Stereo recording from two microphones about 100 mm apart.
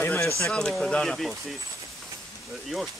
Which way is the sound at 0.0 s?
25° left (ahead or behind).